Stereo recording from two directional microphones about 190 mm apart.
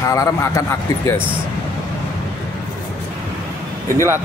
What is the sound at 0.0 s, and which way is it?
A man's voice, 15° left (ahead or behind).